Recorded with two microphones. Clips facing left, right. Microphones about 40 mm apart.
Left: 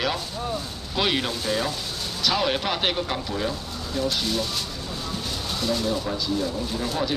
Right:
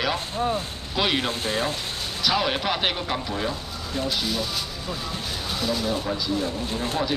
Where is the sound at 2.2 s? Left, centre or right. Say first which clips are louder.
Even; centre.